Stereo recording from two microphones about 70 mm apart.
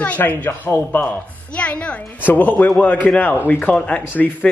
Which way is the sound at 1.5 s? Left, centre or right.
Centre.